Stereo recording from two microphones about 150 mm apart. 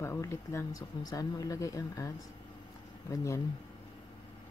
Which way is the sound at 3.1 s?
20° left (ahead or behind).